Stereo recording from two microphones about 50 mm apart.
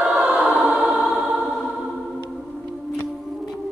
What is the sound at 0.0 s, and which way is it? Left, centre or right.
Choir, right.